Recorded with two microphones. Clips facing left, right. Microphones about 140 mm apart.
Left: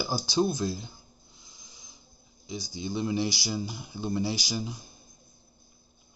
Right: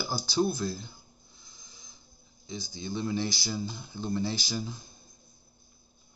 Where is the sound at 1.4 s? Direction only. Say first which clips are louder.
Left 1 dB; 15° left (ahead or behind).